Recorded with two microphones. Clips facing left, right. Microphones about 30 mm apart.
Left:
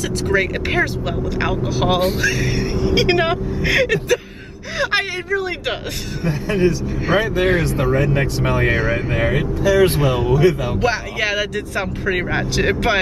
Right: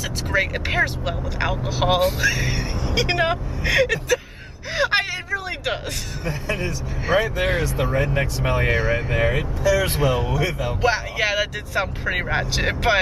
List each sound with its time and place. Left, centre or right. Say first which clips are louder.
0.3 s speech: left 3 dB; centre
2.6 s speech: left 7 dB; centre
4.7 s speech: left 1 dB; centre
6.2 s a man's voice: left 9 dB; left
7.1 s speech: left 3 dB; centre
10.8 s speech: left 1 dB; centre